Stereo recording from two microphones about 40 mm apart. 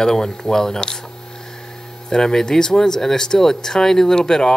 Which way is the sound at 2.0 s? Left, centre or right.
Centre.